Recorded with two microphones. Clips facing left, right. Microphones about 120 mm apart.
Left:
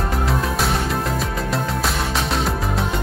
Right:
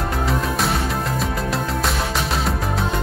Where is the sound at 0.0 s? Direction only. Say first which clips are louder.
Even; centre (ahead or behind).